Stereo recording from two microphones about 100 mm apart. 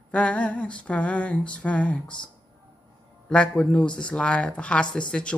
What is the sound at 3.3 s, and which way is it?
Speech, 10° left (ahead or behind).